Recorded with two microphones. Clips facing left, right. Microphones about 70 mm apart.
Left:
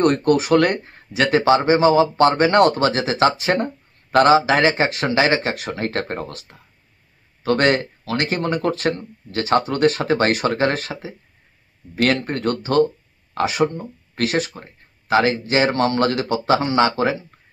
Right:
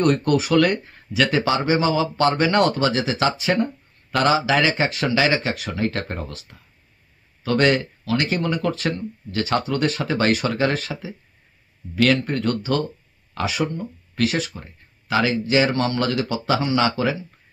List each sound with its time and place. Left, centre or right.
0.0 s speech: left
7.4 s speech: left